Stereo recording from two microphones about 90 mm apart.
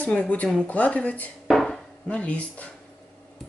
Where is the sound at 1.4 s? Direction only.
5° left (ahead or behind).